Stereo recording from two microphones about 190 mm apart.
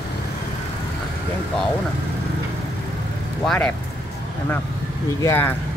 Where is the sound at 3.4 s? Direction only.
5° left (ahead or behind).